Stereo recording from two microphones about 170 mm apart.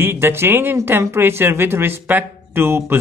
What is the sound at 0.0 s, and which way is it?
Speech, 15° right (ahead or behind).